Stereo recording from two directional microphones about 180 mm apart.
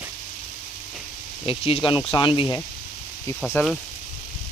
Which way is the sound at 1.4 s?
30° left (ahead or behind).